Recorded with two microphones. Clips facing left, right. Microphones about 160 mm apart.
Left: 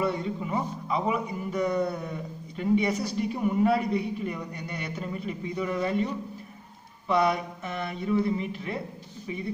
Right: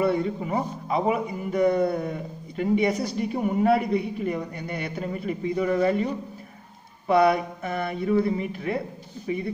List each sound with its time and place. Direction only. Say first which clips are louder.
0.0 s a man's voice: right 5 dB; 40° right (ahead or behind)
1.1 s a man's voice: right 3 dB; 50° right (ahead or behind)
7.1 s a man's voice: right 5 dB; 50° right (ahead or behind)